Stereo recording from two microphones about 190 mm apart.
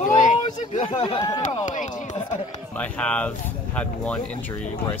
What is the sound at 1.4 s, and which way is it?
Speech, 40° left (ahead or behind).